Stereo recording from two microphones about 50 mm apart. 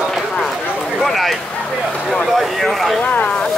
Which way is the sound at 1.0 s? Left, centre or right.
Centre.